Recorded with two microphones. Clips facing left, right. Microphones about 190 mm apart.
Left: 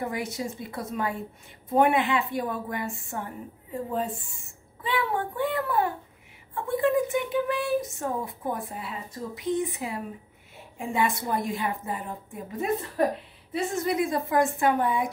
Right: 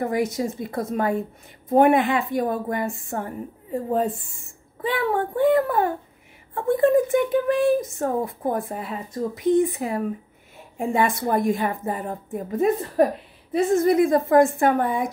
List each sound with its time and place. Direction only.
0.0 s speech: 45° right (ahead or behind)
4.8 s child singing: 45° right (ahead or behind)
6.5 s speech: 50° right (ahead or behind)